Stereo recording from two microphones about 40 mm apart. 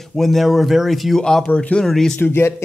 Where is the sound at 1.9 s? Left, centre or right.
Centre.